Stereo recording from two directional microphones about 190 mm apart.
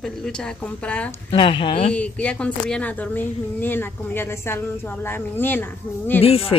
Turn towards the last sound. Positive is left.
turn(degrees=30)  # may be behind; listen again after turning